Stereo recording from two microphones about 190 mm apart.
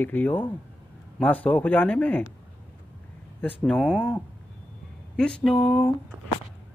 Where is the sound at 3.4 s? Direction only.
5° left (ahead or behind).